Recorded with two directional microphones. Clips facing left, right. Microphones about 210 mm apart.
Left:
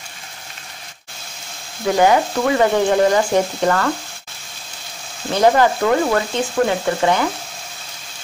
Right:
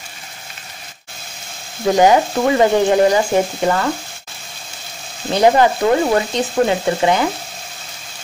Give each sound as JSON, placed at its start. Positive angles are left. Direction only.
{"t": 1.9, "sound": "frying", "side_deg": -20}
{"t": 5.3, "sound": "frying", "side_deg": -20}